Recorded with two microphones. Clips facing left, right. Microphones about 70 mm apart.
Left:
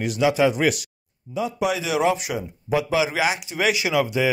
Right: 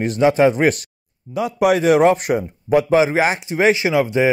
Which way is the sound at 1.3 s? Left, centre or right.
Right.